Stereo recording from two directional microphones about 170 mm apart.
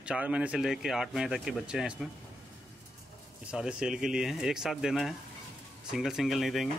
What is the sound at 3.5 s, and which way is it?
Speech, 5° right (ahead or behind).